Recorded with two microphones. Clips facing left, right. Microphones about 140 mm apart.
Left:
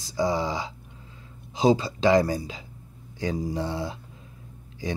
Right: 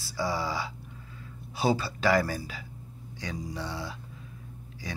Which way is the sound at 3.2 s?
30° left (ahead or behind).